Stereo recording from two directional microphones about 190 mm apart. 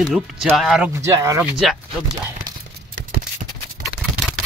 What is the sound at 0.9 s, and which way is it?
Speech, 15° right (ahead or behind).